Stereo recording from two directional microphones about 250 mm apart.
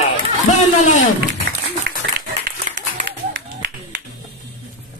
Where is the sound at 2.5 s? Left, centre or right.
Right.